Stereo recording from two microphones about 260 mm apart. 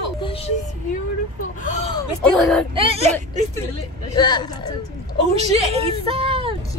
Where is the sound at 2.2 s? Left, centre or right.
Centre.